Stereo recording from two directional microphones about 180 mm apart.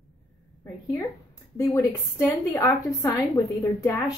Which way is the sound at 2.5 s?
15° left (ahead or behind).